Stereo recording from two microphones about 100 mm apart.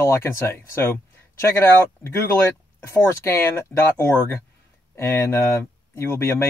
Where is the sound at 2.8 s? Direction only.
30° left (ahead or behind).